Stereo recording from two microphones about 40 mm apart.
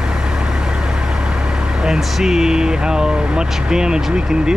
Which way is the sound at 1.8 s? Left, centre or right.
Centre.